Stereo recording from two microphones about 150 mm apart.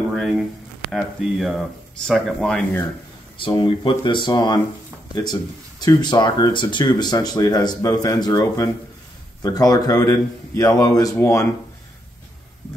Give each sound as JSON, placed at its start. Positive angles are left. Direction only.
{"t": 0.1, "sound": "speech", "side_deg": -5}
{"t": 3.3, "sound": "speech", "side_deg": 35}